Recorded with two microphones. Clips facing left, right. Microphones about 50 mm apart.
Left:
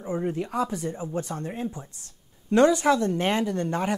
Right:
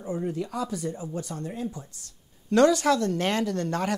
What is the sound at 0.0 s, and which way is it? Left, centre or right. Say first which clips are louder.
Speech: left 2 dB; left.